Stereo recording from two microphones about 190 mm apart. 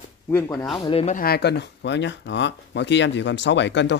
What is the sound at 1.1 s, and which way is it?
Speech, 55° left (ahead or behind).